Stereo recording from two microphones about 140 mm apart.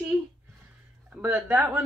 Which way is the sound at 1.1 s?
10° right (ahead or behind).